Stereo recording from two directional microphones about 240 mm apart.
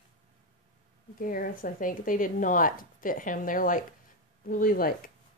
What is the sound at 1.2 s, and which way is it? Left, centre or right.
A woman's voice, left.